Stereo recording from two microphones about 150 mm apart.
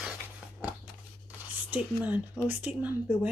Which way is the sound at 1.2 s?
10° right (ahead or behind).